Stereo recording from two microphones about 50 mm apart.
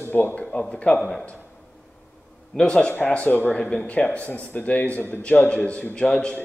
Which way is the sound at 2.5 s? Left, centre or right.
Centre.